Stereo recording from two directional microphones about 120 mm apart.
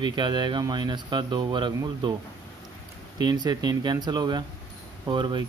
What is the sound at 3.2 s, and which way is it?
Speech, 35° right (ahead or behind).